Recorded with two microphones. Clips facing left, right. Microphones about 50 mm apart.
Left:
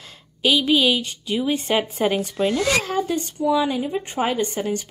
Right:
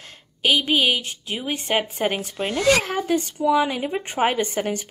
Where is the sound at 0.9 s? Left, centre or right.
Right.